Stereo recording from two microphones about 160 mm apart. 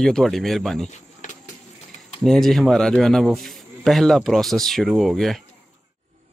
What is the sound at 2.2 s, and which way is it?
Speech, centre (ahead or behind).